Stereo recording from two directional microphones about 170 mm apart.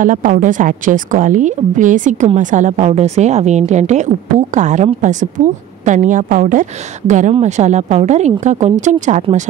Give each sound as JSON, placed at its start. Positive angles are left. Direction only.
{"t": 0.0, "sound": "a woman's voice", "side_deg": -50}